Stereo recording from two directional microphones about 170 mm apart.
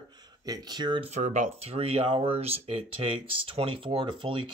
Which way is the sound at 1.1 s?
45° right (ahead or behind).